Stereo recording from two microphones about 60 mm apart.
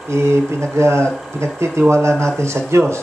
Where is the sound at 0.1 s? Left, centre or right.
Right.